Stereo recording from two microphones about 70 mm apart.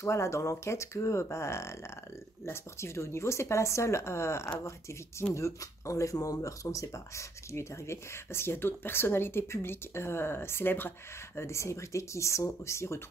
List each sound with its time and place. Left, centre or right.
0.0 s speech: left
11.3 s speech: left